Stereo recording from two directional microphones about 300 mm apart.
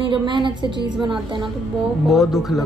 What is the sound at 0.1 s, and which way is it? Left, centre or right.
Speech, centre.